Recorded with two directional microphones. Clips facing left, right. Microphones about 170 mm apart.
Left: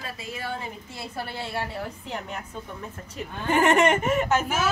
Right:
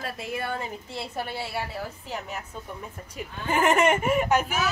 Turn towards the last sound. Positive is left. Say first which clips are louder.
# even
turn(degrees=-10)  # may be behind; listen again after turning